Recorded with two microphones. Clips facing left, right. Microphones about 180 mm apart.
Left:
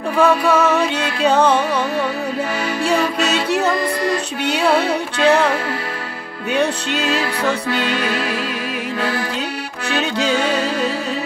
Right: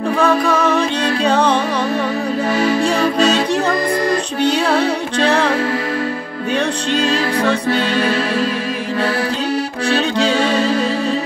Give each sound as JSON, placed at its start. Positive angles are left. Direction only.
{"t": 0.2, "sound": "music", "side_deg": 5}
{"t": 3.0, "sound": "music", "side_deg": -35}
{"t": 4.5, "sound": "music", "side_deg": 5}
{"t": 6.5, "sound": "music", "side_deg": 5}
{"t": 7.7, "sound": "music", "side_deg": -40}